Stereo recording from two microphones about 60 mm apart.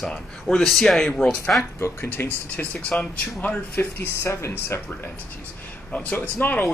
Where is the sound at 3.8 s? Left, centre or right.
Left.